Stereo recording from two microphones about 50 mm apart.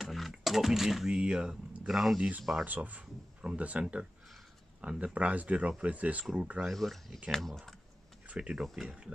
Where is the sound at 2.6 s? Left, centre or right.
Right.